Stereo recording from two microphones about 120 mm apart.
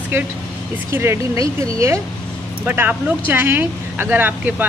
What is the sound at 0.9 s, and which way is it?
Speech, 25° right (ahead or behind).